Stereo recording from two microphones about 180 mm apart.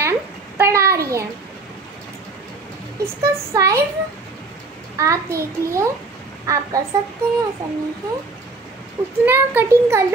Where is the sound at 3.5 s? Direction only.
20° right (ahead or behind).